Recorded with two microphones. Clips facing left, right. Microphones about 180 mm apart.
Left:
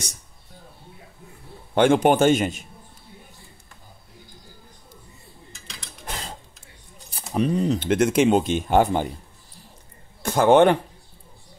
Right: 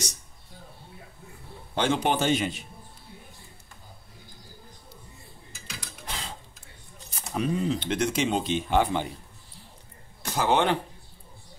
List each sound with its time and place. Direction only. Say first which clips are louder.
1.8 s speech: left 8 dB; 50° left (ahead or behind)
6.0 s a sound: left 4 dB; 50° left (ahead or behind)
7.1 s speech: left 5 dB; 35° left (ahead or behind)
10.2 s speech: left 9 dB; 50° left (ahead or behind)